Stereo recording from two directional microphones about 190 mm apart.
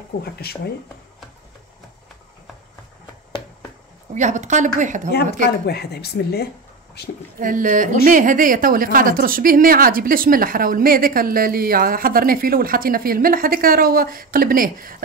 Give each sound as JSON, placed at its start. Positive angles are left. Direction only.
{"t": 0.2, "sound": "speech", "side_deg": 55}
{"t": 4.1, "sound": "a woman's voice", "side_deg": -40}
{"t": 5.7, "sound": "speech", "side_deg": 55}
{"t": 7.3, "sound": "a woman's voice", "side_deg": -45}